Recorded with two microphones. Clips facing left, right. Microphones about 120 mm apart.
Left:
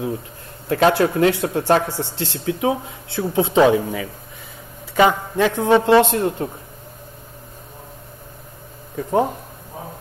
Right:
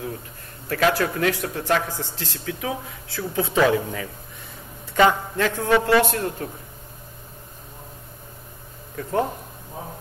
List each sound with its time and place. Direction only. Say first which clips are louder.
0.7 s a man's voice: left 5 dB; 25° left (ahead or behind)
4.9 s a man's voice: left 2 dB; 15° left (ahead or behind)
8.9 s a man's voice: left 5 dB; 20° left (ahead or behind)